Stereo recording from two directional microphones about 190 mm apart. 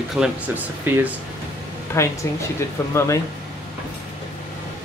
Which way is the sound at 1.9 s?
15° left (ahead or behind).